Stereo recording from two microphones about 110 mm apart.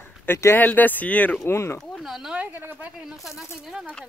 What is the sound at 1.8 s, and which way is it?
Speech, centre (ahead or behind).